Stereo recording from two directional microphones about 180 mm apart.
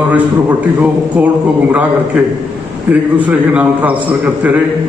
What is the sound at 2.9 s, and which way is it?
A man's voice, 10° right (ahead or behind).